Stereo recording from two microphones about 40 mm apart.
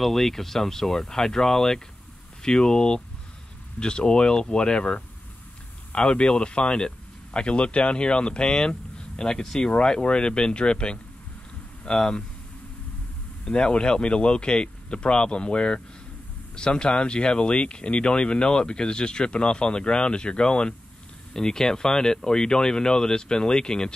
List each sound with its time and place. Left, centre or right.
0.0 s speech: centre; by 5.0 s left
6.1 s speech: left
13.5 s speech: left